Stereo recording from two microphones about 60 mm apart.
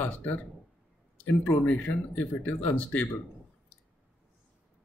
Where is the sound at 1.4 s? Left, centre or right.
Left.